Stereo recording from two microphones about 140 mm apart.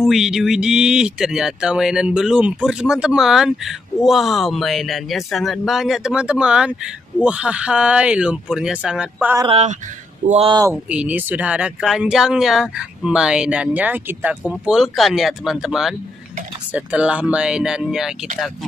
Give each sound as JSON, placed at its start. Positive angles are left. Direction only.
{"t": 0.0, "sound": "speech", "side_deg": -5}
{"t": 9.5, "sound": "speech", "side_deg": -50}
{"t": 10.7, "sound": "speech", "side_deg": -10}